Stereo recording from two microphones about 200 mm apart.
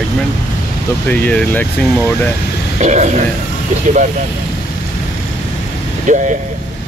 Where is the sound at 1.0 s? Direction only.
10° left (ahead or behind).